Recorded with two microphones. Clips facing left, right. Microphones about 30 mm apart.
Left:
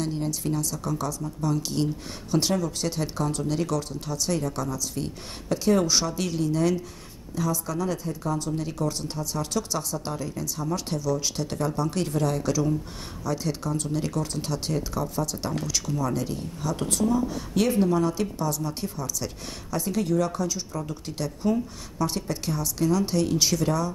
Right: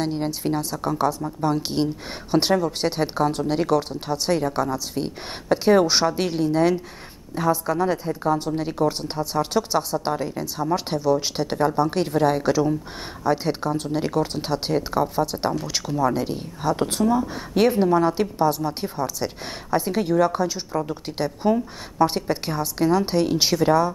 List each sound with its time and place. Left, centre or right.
0.0 s speech: right